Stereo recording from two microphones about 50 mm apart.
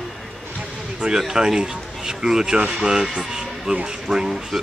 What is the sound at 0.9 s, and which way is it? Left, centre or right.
Speech, centre.